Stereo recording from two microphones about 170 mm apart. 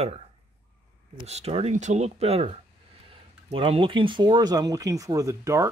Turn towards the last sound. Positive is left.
turn(degrees=-20)  # may be behind; listen again after turning